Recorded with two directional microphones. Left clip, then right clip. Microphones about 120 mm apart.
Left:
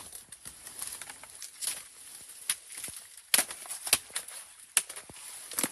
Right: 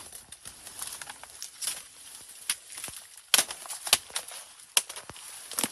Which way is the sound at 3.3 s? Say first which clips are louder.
Right 4 dB; 25° right (ahead or behind).